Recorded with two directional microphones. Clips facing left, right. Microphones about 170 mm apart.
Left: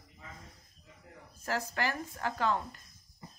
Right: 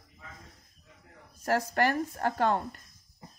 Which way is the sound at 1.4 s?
60° right (ahead or behind).